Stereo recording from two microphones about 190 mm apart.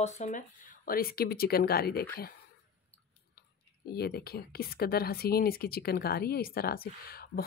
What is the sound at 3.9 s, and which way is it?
Speech, 55° left (ahead or behind).